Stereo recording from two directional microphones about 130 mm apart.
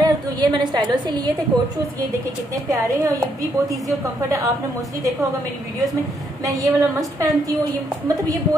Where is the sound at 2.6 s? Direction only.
25° right (ahead or behind).